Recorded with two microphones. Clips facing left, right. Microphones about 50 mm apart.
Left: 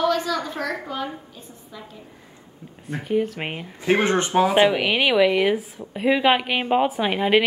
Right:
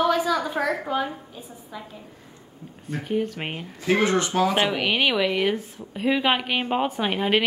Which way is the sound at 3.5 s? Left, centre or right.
Left.